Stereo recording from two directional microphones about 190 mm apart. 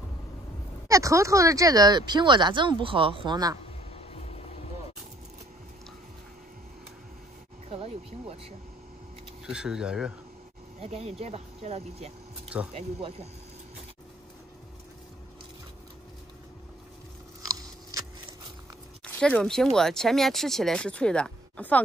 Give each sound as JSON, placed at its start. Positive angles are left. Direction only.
{"t": 0.8, "sound": "speech", "side_deg": -15}
{"t": 3.9, "sound": "vehicle", "side_deg": 30}
{"t": 7.7, "sound": "speech", "side_deg": -30}
{"t": 9.5, "sound": "speech", "side_deg": -5}
{"t": 10.8, "sound": "speech", "side_deg": -35}
{"t": 19.0, "sound": "speech", "side_deg": 5}